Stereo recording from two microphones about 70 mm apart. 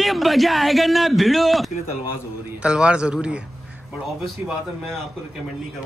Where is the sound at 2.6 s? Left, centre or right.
Centre.